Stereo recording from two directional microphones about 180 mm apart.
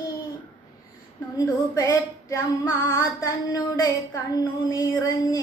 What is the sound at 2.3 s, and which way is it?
Female singing, 15° left (ahead or behind).